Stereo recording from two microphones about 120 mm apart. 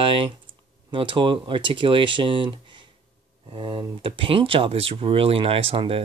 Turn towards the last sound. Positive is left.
turn(degrees=-50)  # may be behind; listen again after turning